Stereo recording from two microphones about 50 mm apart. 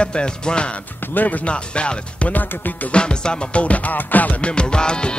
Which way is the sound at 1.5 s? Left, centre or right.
Left.